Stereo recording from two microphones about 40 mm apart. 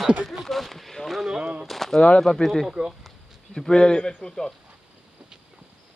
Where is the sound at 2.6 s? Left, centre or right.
Centre.